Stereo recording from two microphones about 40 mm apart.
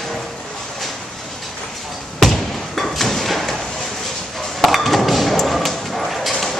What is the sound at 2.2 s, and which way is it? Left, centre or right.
Thump, centre.